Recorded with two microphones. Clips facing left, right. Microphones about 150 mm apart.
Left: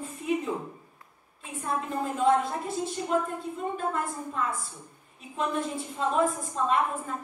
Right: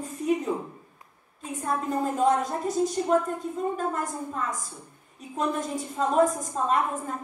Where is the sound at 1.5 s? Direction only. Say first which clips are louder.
Right 3 dB; 40° right (ahead or behind).